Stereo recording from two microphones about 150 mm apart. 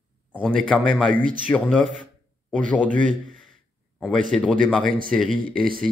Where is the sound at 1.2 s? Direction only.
65° right (ahead or behind).